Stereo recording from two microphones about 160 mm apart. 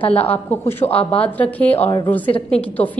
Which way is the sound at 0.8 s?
35° left (ahead or behind).